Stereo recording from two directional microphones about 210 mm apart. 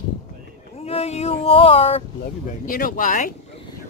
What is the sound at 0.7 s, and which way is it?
Speech, 30° left (ahead or behind).